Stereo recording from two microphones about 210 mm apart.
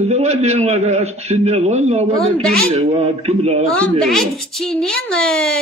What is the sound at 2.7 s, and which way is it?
Speech, 30° right (ahead or behind).